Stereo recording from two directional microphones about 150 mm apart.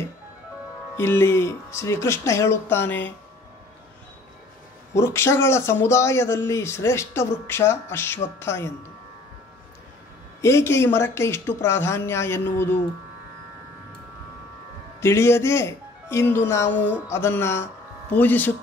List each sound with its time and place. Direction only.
0.9 s speech: 15° left (ahead or behind)
4.9 s speech: 20° left (ahead or behind)
10.4 s speech: 20° left (ahead or behind)
15.0 s speech: 15° left (ahead or behind)